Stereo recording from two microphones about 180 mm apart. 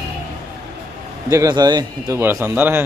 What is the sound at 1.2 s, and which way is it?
Speech, 20° right (ahead or behind).